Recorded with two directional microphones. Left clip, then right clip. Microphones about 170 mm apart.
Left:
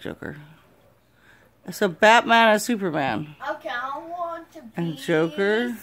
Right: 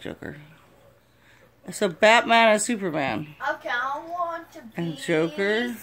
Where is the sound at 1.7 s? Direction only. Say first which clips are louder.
Left 2 dB; 25° left (ahead or behind).